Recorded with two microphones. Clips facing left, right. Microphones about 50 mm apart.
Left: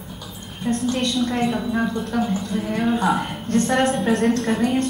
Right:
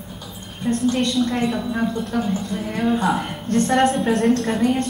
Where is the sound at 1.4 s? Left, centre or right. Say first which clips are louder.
Left 1 dB; centre.